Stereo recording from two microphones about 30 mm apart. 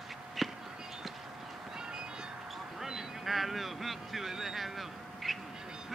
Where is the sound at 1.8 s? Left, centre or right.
Right.